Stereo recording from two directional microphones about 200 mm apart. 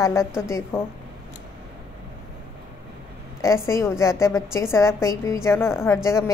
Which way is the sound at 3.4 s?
15° left (ahead or behind).